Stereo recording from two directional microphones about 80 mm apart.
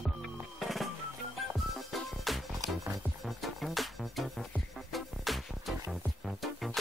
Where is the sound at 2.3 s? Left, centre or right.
Centre.